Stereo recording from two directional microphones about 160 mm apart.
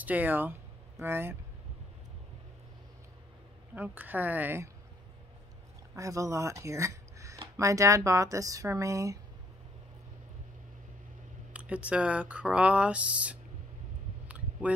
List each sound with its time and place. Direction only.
0.0 s speech: 10° right (ahead or behind)
3.7 s speech: 10° right (ahead or behind)
5.9 s speech: 20° right (ahead or behind)
11.5 s speech: 10° right (ahead or behind)
14.2 s a sound: 10° right (ahead or behind)